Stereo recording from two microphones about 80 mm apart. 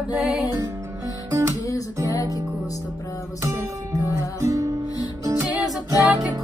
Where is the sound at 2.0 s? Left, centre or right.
Left.